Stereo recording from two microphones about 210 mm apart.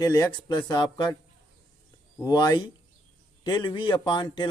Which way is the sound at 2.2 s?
20° left (ahead or behind).